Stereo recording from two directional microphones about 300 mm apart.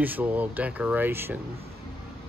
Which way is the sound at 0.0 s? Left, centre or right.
Centre.